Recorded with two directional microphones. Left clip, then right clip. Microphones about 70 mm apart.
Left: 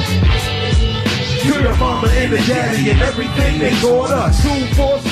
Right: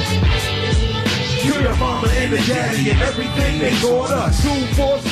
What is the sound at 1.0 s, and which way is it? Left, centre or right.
Music, right.